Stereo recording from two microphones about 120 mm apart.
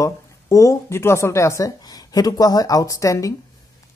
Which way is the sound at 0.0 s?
25° left (ahead or behind).